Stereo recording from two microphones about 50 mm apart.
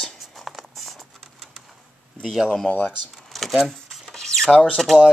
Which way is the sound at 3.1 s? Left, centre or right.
Centre.